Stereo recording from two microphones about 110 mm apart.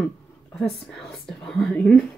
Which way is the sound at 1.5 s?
10° left (ahead or behind).